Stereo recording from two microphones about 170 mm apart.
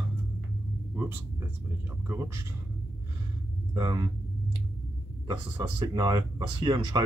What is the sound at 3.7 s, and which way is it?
Speech, 25° right (ahead or behind).